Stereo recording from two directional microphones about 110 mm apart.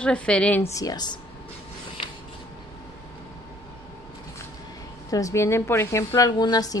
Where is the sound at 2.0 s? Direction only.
50° left (ahead or behind).